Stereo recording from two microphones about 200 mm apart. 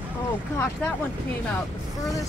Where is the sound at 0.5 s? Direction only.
15° left (ahead or behind).